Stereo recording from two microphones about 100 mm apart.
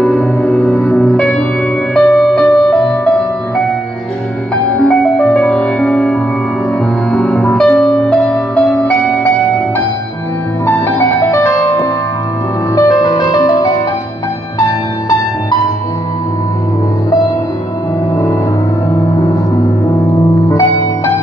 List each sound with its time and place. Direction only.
0.0 s music: 15° left (ahead or behind)
4.7 s music: 10° left (ahead or behind)
10.7 s music: 20° left (ahead or behind); by 13.7 s 40° left (ahead or behind)
20.4 s music: 30° left (ahead or behind)